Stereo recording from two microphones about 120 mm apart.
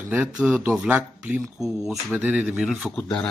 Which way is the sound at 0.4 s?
5° right (ahead or behind).